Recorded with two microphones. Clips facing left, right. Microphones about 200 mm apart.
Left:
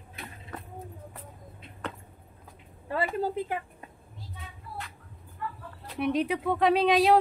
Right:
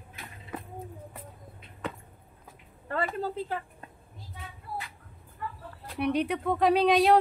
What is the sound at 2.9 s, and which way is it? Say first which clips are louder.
Speech: left 2 dB; 10° left (ahead or behind).